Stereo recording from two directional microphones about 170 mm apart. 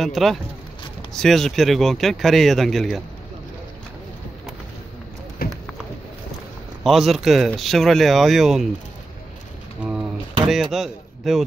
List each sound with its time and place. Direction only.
0.0 s speech: centre (ahead or behind)
5.4 s a sound: 60° left (ahead or behind)
6.8 s speech: centre (ahead or behind)
10.5 s speech: centre (ahead or behind)